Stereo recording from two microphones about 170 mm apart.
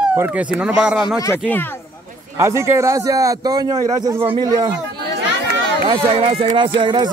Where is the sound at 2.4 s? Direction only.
15° right (ahead or behind).